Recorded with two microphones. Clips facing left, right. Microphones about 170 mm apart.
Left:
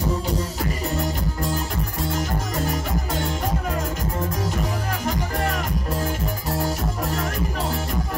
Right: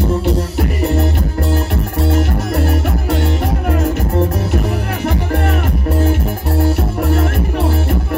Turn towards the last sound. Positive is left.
turn(degrees=-65)  # may be behind; listen again after turning